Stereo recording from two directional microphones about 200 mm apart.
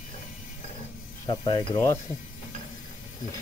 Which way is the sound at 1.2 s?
20° left (ahead or behind).